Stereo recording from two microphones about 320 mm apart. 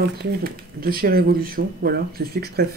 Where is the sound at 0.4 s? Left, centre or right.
Right.